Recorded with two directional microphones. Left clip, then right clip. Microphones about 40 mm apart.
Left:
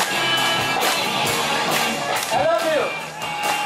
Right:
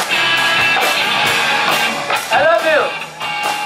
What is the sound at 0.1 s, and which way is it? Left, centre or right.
Music, right.